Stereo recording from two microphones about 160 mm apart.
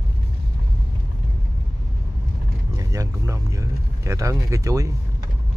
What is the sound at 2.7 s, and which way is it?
Vehicle, 20° right (ahead or behind).